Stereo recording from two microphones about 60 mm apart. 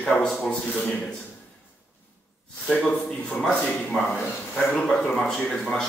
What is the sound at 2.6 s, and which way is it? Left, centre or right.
A man's voice, centre.